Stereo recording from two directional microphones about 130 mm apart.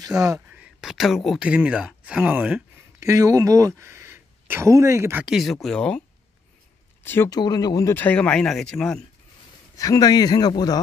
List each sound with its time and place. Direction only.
0.0 s speech: 25° right (ahead or behind)
0.6 s speech: 5° right (ahead or behind); by 5.2 s 20° right (ahead or behind)
5.2 s speech: centre (ahead or behind)
7.0 s a sound: 15° left (ahead or behind)
7.2 s speech: 30° left (ahead or behind)
7.9 s speech: 10° left (ahead or behind)
9.8 s speech: 25° left (ahead or behind)